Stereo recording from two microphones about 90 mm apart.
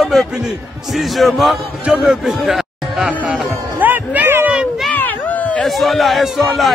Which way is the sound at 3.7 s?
20° right (ahead or behind).